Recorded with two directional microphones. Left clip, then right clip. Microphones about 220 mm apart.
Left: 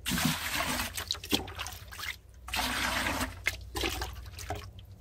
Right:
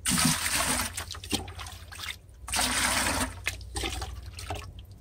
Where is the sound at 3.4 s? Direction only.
20° left (ahead or behind).